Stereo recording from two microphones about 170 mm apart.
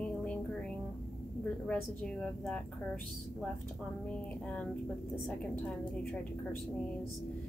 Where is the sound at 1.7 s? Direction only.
5° left (ahead or behind).